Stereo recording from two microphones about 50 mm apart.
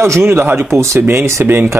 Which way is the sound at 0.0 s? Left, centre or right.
Right.